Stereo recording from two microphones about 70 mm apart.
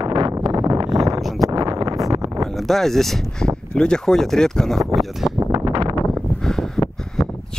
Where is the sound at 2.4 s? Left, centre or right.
Centre.